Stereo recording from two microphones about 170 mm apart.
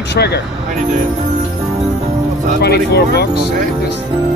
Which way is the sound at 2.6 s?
70° left (ahead or behind).